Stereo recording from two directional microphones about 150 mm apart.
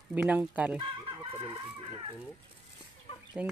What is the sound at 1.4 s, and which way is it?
Speech, 35° right (ahead or behind).